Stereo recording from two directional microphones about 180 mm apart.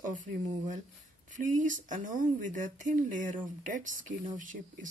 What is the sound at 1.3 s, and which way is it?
Speech, 45° right (ahead or behind).